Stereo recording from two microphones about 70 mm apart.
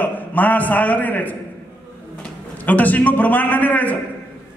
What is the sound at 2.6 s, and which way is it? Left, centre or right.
A man's voice, left.